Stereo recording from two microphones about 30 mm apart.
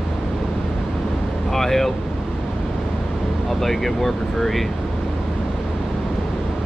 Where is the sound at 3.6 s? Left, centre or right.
Centre.